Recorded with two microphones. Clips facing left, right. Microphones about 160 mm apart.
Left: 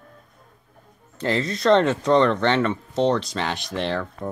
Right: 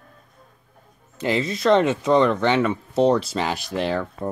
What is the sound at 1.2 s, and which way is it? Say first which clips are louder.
Speech: right 1 dB; 10° right (ahead or behind).